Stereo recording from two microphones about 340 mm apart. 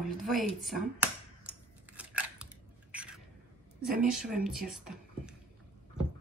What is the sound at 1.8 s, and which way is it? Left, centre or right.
Scissors, centre.